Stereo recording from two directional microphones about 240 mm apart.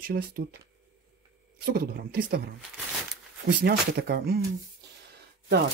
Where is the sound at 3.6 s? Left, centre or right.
Right.